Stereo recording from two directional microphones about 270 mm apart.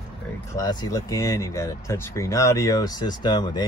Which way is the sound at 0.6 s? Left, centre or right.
Centre.